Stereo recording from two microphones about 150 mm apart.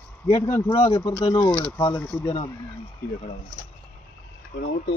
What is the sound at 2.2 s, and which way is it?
Speech, 35° left (ahead or behind).